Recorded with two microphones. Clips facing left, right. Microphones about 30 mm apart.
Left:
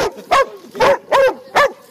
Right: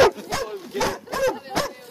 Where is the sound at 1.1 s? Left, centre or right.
Left.